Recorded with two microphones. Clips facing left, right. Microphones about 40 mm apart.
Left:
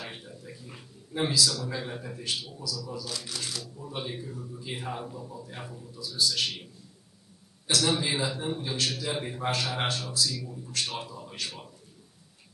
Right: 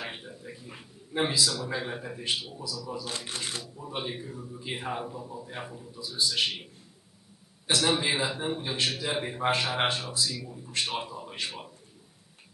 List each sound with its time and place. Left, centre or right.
0.0 s a man's voice: centre
3.3 s speech: right
3.6 s a man's voice: centre